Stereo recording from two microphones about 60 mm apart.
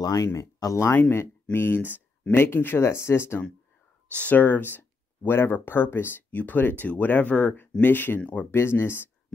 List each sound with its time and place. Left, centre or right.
0.0 s speech: left
0.3 s speech: left
1.1 s speech: left
2.8 s speech: left
4.1 s speech: left
6.3 s speech: left
8.2 s speech: left
8.5 s speech: left